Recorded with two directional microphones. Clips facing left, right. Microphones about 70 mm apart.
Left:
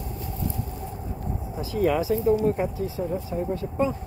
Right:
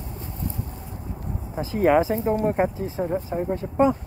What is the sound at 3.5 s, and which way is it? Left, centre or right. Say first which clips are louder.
Speech: right 6 dB; right.